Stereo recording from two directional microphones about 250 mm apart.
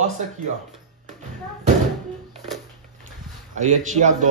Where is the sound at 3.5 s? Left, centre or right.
Right.